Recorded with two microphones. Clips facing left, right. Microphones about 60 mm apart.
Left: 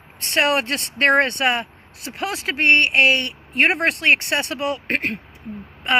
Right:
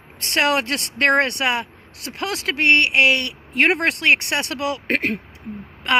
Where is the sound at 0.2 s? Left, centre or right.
Right.